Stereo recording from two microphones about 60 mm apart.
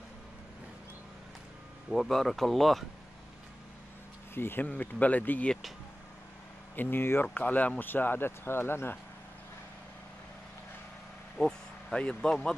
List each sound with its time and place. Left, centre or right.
2.0 s speech: centre
4.3 s speech: left
6.7 s speech: left
7.3 s speech: left
11.3 s speech: centre